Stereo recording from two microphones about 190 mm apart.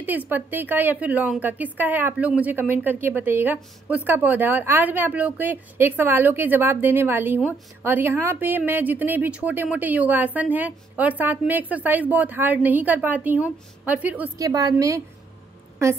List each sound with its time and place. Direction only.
0.0 s a woman's voice: 10° right (ahead or behind)